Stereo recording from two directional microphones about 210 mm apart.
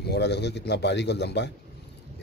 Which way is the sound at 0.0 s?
55° left (ahead or behind).